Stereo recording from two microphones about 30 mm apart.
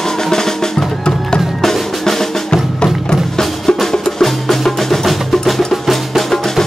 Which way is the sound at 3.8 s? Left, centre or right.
Centre.